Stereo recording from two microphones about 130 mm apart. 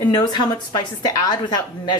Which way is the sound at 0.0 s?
35° left (ahead or behind).